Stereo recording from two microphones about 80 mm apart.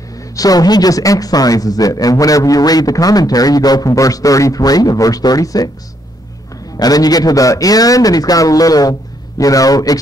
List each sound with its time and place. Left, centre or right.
0.4 s speech: left
6.8 s speech: left